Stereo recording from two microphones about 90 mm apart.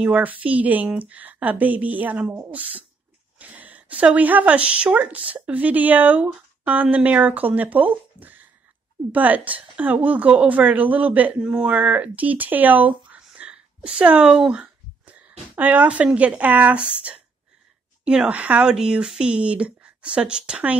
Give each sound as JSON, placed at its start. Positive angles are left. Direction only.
{"t": 0.0, "sound": "a woman's voice", "side_deg": -15}
{"t": 3.3, "sound": "a woman's voice", "side_deg": -15}